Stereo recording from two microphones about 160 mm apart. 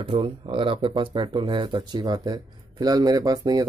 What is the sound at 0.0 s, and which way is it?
Speech, 30° right (ahead or behind).